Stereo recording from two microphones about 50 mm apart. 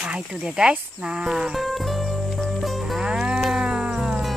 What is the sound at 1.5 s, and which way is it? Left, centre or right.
Music, centre.